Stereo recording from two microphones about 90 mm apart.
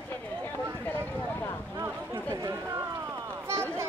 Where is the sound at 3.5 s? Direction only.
30° right (ahead or behind).